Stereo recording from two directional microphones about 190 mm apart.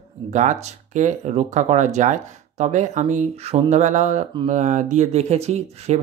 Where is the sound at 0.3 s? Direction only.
40° right (ahead or behind).